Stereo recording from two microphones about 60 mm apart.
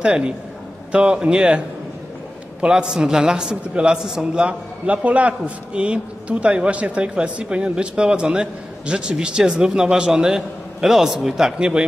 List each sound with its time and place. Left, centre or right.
0.0 s a man's voice: centre
2.6 s a man's voice: centre